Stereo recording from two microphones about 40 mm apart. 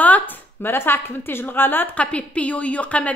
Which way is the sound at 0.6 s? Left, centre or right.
Left.